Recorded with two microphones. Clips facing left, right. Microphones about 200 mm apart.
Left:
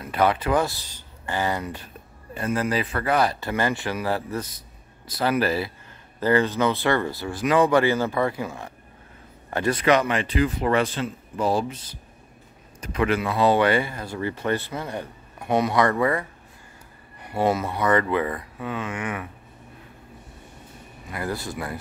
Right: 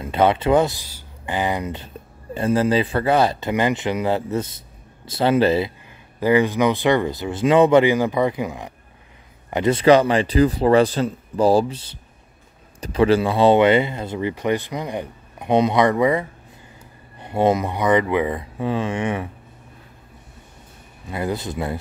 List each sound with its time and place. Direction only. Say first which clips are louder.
0.0 s speech: right 4 dB; 25° right (ahead or behind)
5.9 s speech: right 2 dB; 15° right (ahead or behind); by 19.2 s 30° right (ahead or behind)
21.1 s speech: right 5 dB; 20° right (ahead or behind)